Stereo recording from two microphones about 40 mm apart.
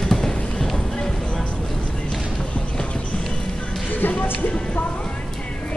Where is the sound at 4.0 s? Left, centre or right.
Left.